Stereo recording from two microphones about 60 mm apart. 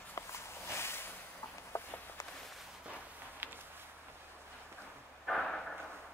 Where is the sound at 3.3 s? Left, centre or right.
Right.